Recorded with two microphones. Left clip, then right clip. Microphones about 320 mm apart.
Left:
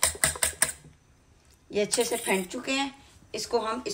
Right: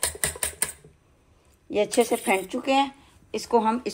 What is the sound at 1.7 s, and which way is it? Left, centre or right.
A woman's voice, centre.